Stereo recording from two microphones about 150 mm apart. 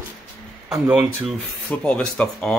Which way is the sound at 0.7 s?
10° right (ahead or behind).